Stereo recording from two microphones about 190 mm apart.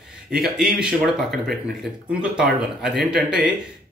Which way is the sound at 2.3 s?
Centre (ahead or behind).